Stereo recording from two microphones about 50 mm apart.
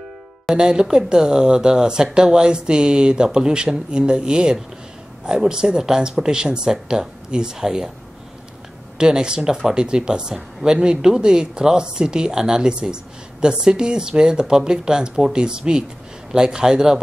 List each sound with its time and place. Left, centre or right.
0.6 s speech: centre
8.9 s speech: centre